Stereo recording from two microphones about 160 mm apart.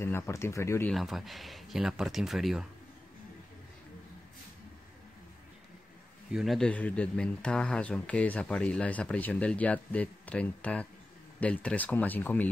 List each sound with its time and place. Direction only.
0.0 s speech: 15° left (ahead or behind)
0.9 s speech: centre (ahead or behind)
6.3 s speech: centre (ahead or behind)